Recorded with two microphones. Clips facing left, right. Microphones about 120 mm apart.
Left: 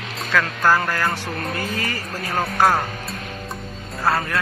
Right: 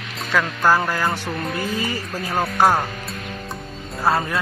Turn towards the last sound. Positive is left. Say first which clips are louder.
# right 1 dB
turn(degrees=-15)  # may be behind; listen again after turning